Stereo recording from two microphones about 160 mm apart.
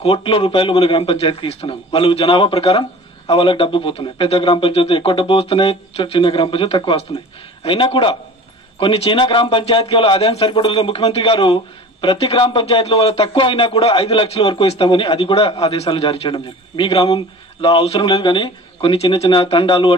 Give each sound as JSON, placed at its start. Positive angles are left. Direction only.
{"t": 0.0, "sound": "speech", "side_deg": 35}